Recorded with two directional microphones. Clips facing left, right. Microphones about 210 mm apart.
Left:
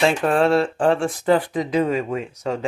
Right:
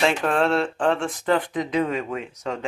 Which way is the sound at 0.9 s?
35° left (ahead or behind).